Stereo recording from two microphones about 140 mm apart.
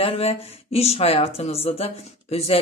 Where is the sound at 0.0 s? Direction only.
45° left (ahead or behind).